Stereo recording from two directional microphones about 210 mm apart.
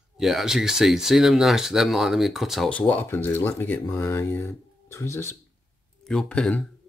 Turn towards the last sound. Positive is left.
turn(degrees=5)  # may be behind; listen again after turning